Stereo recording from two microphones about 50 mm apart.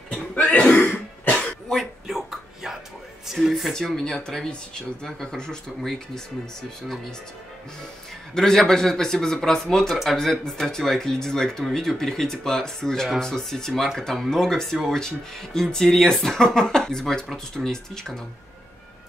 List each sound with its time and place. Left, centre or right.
0.1 s cough: left
0.7 s throat clearing: left
2.0 s a sound: centre
3.4 s speech: centre
3.7 s speech: centre
8.4 s speech: centre